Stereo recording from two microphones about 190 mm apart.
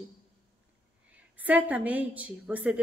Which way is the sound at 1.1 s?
10° right (ahead or behind).